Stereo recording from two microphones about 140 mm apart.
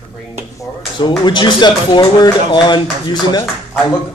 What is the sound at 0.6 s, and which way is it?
Speech, 35° left (ahead or behind).